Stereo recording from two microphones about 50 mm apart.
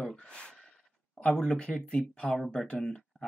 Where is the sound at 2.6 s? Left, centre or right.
Centre.